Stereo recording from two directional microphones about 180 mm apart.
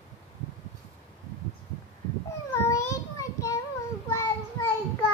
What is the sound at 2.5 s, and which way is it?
Child singing, 15° left (ahead or behind).